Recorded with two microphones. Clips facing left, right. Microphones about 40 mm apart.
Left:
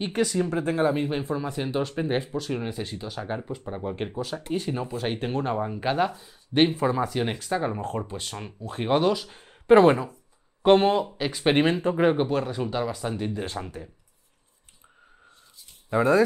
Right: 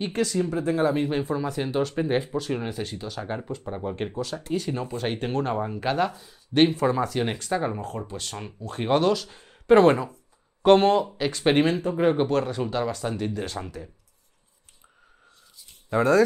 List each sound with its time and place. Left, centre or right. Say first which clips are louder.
0.0 s speech: even; centre
0.5 s speech: right 1 dB; left
0.8 s speech: right 1 dB; centre
9.8 s speech: even; centre
11.5 s speech: even; left
12.2 s speech: right 2 dB; centre
15.9 s speech: even; centre